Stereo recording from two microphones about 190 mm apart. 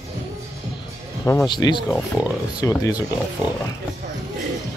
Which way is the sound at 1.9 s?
5° left (ahead or behind).